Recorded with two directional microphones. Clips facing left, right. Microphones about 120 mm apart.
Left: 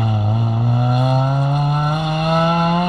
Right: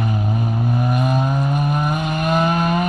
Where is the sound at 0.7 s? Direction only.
25° left (ahead or behind).